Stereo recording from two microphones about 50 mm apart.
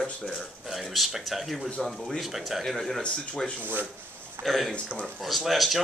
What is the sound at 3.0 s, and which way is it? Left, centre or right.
Speech, left.